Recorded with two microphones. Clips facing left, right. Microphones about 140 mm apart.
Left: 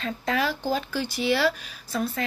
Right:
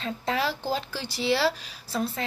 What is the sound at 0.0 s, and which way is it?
A woman's voice, 25° right (ahead or behind).